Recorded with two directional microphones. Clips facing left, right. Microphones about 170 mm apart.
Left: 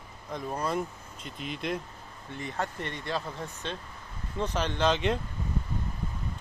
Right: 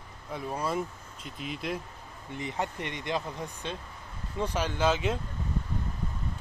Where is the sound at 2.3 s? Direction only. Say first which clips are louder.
Right 1 dB; 20° right (ahead or behind).